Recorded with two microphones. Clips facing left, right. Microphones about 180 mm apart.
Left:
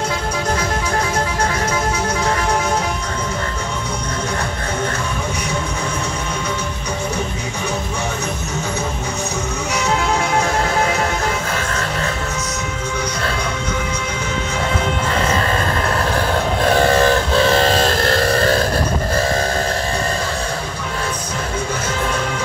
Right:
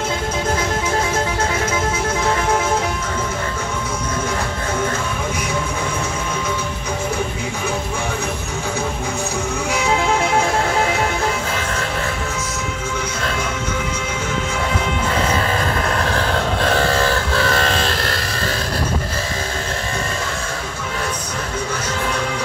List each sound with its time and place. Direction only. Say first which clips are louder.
16.8 s vehicle: left 4 dB; 20° left (ahead or behind); by 18.6 s 45° left (ahead or behind)